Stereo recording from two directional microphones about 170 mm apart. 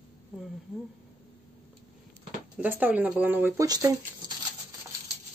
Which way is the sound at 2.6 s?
10° right (ahead or behind).